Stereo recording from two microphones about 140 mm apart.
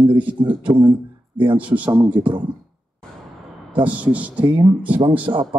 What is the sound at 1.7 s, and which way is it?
Speech, 25° right (ahead or behind).